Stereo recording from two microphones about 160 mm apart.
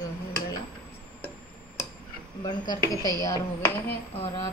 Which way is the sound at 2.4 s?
25° left (ahead or behind).